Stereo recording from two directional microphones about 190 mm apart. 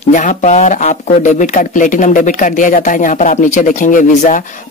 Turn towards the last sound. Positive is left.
turn(degrees=40)  # may be behind; listen again after turning